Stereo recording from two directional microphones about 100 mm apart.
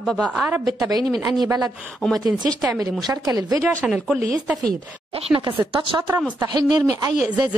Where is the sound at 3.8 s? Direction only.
5° right (ahead or behind).